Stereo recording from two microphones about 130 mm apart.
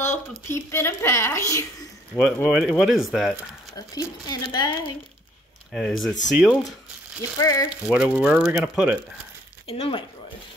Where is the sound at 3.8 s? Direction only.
30° left (ahead or behind).